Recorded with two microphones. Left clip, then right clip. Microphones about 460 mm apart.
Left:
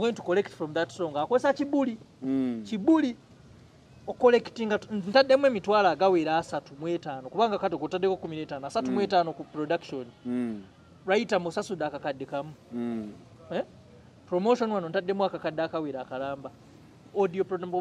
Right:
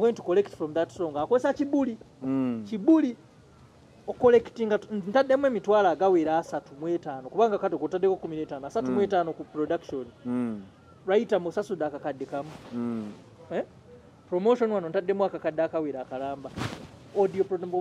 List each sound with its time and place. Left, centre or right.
0.0 s speech: left
2.2 s speech: right
2.7 s speech: left
4.2 s speech: left
11.1 s speech: left
14.3 s speech: left